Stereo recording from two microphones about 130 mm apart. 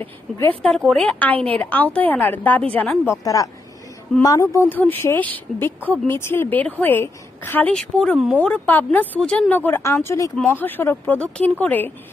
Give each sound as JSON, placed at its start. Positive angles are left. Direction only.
{"t": 0.0, "sound": "a woman's voice", "side_deg": 15}
{"t": 0.6, "sound": "a woman's voice", "side_deg": 0}
{"t": 4.2, "sound": "a woman's voice", "side_deg": 25}
{"t": 7.7, "sound": "a woman's voice", "side_deg": 5}